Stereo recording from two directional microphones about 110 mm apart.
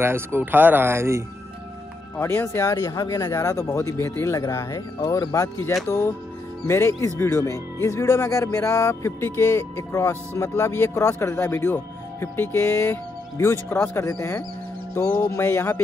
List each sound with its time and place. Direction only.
0.0 s speech: 20° right (ahead or behind)
2.1 s speech: 25° left (ahead or behind)